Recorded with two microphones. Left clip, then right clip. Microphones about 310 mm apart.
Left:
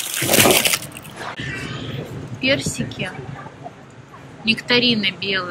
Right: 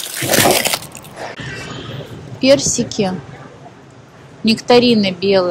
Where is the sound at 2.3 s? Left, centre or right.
Centre.